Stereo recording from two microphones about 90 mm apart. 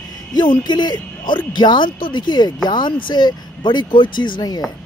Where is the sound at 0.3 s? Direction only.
55° left (ahead or behind).